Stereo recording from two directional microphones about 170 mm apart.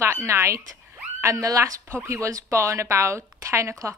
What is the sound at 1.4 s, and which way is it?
Speech, 20° right (ahead or behind).